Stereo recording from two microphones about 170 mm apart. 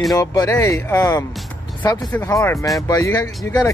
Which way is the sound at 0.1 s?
20° left (ahead or behind).